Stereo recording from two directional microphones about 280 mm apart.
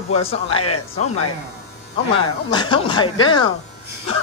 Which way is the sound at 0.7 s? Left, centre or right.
Left.